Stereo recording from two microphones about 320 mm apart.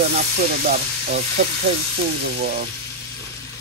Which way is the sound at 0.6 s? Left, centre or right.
Right.